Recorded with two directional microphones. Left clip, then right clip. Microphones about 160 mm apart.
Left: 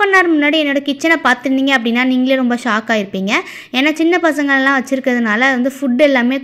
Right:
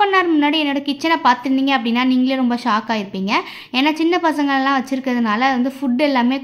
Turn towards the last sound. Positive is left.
turn(degrees=10)  # may be behind; listen again after turning